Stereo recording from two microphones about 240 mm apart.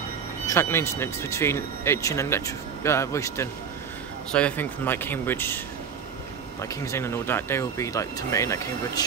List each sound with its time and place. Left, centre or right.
0.5 s speech: centre
6.6 s speech: centre